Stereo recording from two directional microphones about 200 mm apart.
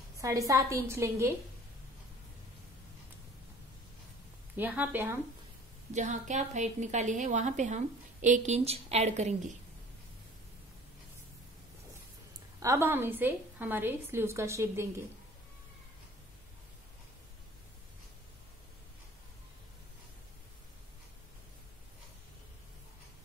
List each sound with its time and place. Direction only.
0.2 s a woman's voice: 15° right (ahead or behind)
4.6 s a woman's voice: 10° right (ahead or behind)
5.9 s a woman's voice: 35° right (ahead or behind)
12.5 s a woman's voice: 15° right (ahead or behind)